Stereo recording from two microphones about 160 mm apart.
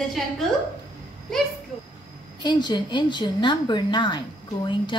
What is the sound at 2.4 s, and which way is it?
A woman's voice, 25° left (ahead or behind).